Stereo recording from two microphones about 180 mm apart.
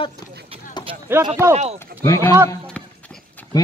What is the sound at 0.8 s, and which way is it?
Run, 25° left (ahead or behind).